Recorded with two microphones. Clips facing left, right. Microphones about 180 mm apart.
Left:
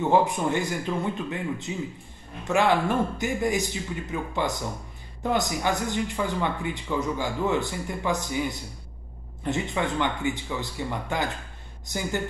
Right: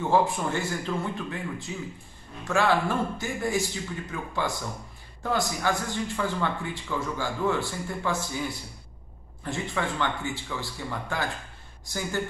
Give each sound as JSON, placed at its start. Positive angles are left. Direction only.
{"t": 0.1, "sound": "speech", "side_deg": 20}